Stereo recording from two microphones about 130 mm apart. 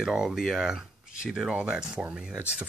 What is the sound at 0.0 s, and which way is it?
Speech, 5° right (ahead or behind).